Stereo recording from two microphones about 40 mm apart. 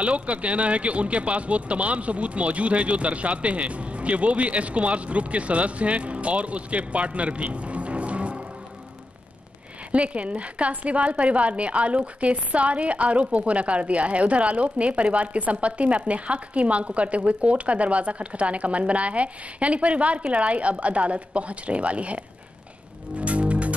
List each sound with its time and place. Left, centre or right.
0.0 s speech: right
9.8 s speech: right
23.1 s music: right